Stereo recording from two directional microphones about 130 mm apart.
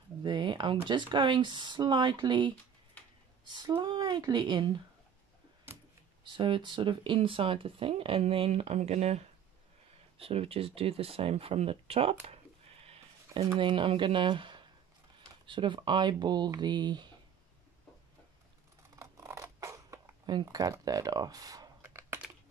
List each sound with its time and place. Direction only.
0.2 s speech: 35° right (ahead or behind)
3.0 s a sound: 10° left (ahead or behind)
3.5 s speech: 35° right (ahead or behind)
6.2 s speech: 40° right (ahead or behind)
12.8 s sheep: 50° right (ahead or behind)
13.5 s speech: 40° right (ahead or behind)
18.9 s a sound: 20° right (ahead or behind)
20.4 s speech: 25° right (ahead or behind)
21.8 s computer keyboard: 20° right (ahead or behind)